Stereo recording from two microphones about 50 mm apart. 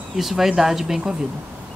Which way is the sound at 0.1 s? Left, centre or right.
Centre.